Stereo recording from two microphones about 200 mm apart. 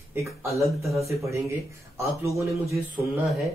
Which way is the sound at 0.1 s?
15° right (ahead or behind).